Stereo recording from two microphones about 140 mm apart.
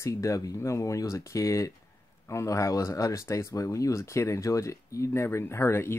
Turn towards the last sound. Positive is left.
turn(degrees=15)  # may be behind; listen again after turning